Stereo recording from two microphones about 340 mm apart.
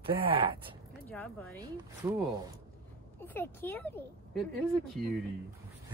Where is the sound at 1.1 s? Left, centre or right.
Centre.